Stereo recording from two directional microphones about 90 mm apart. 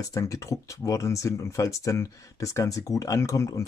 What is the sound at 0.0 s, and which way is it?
Speech, 35° left (ahead or behind).